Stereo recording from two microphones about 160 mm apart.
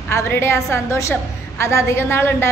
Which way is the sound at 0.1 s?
15° left (ahead or behind).